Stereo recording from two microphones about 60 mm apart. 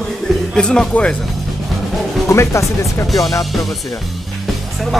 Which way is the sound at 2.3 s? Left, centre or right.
Left.